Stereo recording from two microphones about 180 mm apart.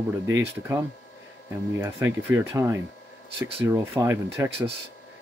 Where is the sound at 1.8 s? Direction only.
15° right (ahead or behind).